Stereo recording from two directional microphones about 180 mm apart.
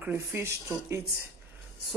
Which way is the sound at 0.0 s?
10° right (ahead or behind).